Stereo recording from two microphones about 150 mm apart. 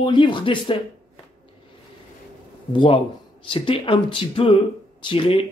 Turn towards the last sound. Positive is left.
turn(degrees=35)  # may be behind; listen again after turning